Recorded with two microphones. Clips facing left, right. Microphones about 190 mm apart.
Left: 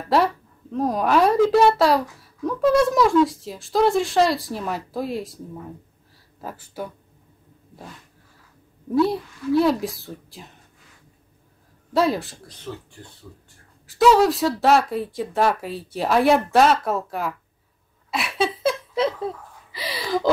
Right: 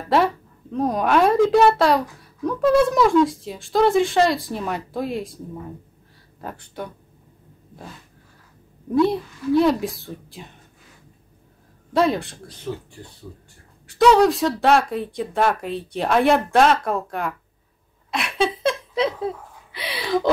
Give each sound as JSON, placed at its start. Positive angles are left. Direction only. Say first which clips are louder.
{"t": 0.1, "sound": "a woman's voice", "louder": "right 1 dB", "side_deg": 0}
{"t": 6.4, "sound": "a woman's voice", "louder": "even", "side_deg": 5}
{"t": 8.9, "sound": "a woman's voice", "louder": "right 1 dB", "side_deg": 0}
{"t": 11.9, "sound": "a woman's voice", "louder": "right 1 dB", "side_deg": 0}
{"t": 12.7, "sound": "speech", "louder": "right 5 dB", "side_deg": -15}
{"t": 13.8, "sound": "a woman's voice", "louder": "right 1 dB", "side_deg": 0}
{"t": 18.1, "sound": "a sound", "louder": "right 1 dB", "side_deg": 5}